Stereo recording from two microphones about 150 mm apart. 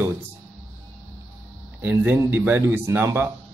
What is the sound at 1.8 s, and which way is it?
Speech, 10° right (ahead or behind).